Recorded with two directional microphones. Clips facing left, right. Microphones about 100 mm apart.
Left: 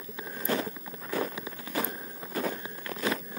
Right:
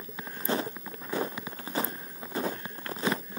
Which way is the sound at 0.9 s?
Centre (ahead or behind).